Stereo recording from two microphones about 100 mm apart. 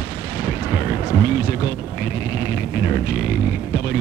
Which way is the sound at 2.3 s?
20° right (ahead or behind).